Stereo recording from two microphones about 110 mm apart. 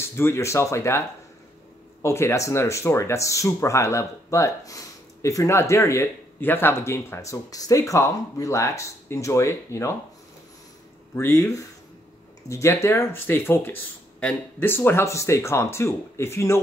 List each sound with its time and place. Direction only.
0.0 s speech: 20° left (ahead or behind)
11.1 s speech: 25° left (ahead or behind)